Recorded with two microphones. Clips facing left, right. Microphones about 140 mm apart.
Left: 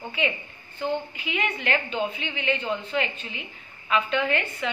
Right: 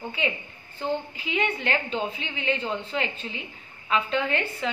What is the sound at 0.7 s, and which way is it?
A woman's voice, 30° right (ahead or behind).